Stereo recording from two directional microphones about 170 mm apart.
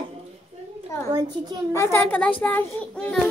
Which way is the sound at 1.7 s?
15° left (ahead or behind).